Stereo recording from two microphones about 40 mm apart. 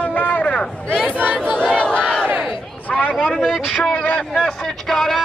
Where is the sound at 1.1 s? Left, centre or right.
Right.